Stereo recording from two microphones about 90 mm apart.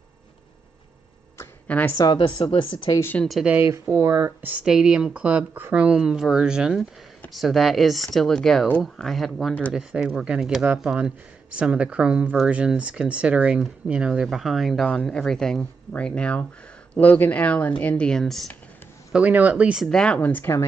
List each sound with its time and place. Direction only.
1.7 s speech: 20° left (ahead or behind)
2.0 s speech: 60° left (ahead or behind); by 2.9 s 80° left
3.2 s speech: 10° left (ahead or behind)
4.0 s speech: 35° right (ahead or behind)
4.4 s speech: 20° right (ahead or behind)
4.6 s speech: 10° right (ahead or behind)
19.1 s speech: 15° right (ahead or behind)
19.9 s speech: 10° left (ahead or behind)